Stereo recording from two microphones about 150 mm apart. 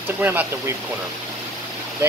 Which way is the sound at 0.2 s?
10° right (ahead or behind).